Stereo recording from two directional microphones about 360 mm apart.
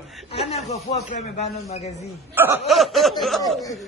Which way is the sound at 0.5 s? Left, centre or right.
Centre.